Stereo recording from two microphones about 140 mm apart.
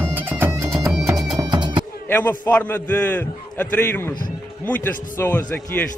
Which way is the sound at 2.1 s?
15° left (ahead or behind).